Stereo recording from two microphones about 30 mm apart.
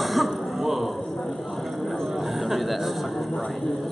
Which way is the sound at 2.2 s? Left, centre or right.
Centre.